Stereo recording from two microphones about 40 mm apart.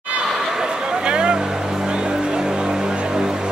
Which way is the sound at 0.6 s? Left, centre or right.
Centre.